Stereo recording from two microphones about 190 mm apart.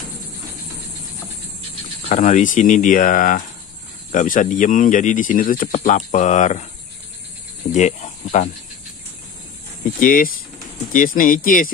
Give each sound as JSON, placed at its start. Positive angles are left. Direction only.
{"t": 2.0, "sound": "speech", "side_deg": 40}
{"t": 7.7, "sound": "speech", "side_deg": 40}
{"t": 9.9, "sound": "speech", "side_deg": 45}